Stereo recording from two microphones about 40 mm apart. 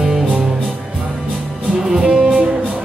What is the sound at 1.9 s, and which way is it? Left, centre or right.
Music, centre.